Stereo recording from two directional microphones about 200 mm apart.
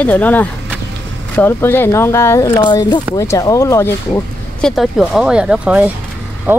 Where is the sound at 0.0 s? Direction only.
10° left (ahead or behind).